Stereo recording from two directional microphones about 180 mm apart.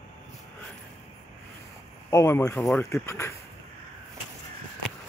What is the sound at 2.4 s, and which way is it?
Speech, 5° left (ahead or behind).